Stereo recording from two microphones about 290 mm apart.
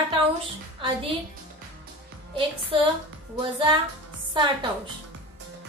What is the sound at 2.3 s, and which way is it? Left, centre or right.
Speech, centre.